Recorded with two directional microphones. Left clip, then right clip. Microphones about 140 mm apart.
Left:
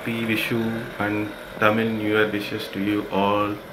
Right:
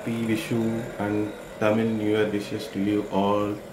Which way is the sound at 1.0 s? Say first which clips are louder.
Left 3 dB; 20° right (ahead or behind).